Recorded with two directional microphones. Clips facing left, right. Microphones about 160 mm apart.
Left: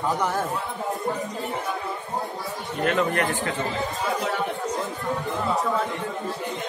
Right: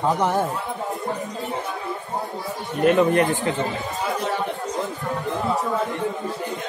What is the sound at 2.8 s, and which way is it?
Speech, 20° right (ahead or behind).